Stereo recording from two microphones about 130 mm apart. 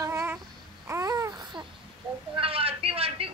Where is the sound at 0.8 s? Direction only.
25° right (ahead or behind).